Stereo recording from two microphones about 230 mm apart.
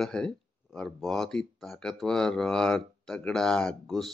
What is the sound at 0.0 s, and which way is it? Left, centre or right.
Speech, centre.